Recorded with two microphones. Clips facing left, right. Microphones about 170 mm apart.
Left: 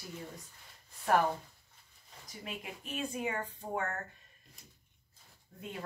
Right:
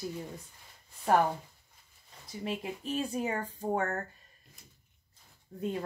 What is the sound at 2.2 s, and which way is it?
Speech, 30° right (ahead or behind).